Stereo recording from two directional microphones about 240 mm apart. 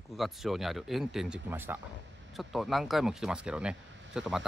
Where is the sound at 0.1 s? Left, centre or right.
Centre.